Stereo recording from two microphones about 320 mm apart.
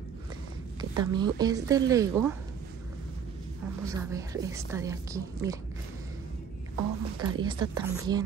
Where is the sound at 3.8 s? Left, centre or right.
Centre.